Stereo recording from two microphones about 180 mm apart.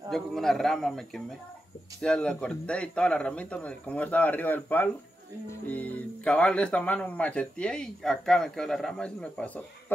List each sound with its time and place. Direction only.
0.1 s a man's voice: centre (ahead or behind)